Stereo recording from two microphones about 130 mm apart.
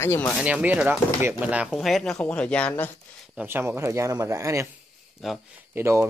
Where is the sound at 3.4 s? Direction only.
15° right (ahead or behind).